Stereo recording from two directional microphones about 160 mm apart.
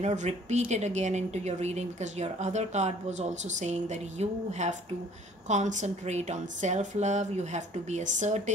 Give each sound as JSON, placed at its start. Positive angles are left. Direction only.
{"t": 0.0, "sound": "a woman's voice", "side_deg": -45}